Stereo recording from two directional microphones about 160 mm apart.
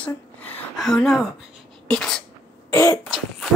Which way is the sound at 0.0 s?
5° left (ahead or behind).